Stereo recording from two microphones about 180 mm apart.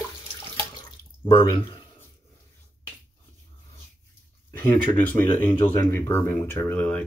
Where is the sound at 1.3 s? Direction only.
30° left (ahead or behind).